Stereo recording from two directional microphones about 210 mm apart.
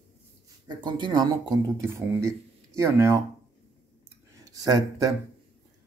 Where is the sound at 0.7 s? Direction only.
20° right (ahead or behind).